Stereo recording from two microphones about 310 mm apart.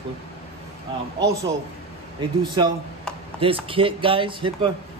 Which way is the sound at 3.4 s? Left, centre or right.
Centre.